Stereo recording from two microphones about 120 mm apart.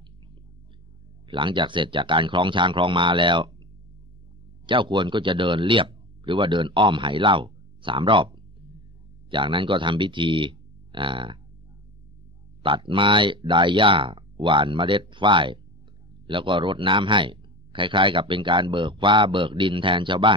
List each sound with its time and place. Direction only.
1.2 s speech: 45° right (ahead or behind)
4.6 s speech: 40° right (ahead or behind)
12.6 s speech: 45° right (ahead or behind)